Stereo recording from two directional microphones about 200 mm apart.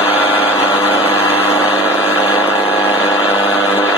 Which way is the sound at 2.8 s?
10° right (ahead or behind).